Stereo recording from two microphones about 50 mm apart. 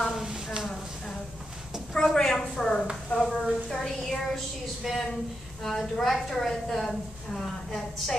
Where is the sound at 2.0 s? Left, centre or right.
Centre.